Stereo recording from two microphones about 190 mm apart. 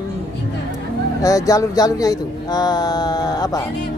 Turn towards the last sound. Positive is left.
turn(degrees=20)  # may be behind; listen again after turning